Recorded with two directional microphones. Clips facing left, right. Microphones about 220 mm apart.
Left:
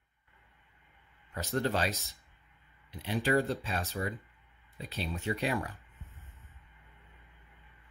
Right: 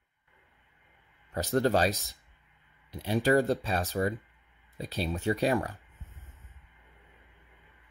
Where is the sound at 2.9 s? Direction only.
40° right (ahead or behind).